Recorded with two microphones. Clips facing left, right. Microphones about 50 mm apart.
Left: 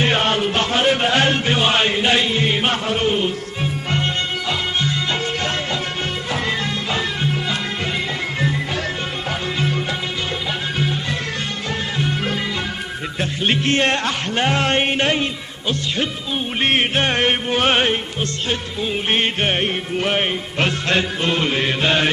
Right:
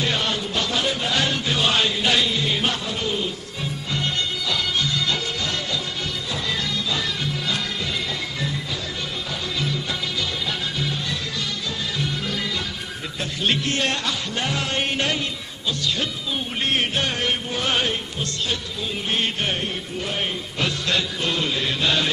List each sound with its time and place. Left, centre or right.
0.0 s music: left
0.6 s a man's voice: left
1.6 s music: left
12.0 s music: left
16.6 s music: left
19.0 s music: left